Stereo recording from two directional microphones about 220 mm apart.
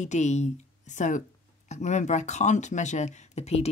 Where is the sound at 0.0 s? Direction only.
30° left (ahead or behind).